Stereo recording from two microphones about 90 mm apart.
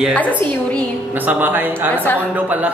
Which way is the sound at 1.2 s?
20° right (ahead or behind).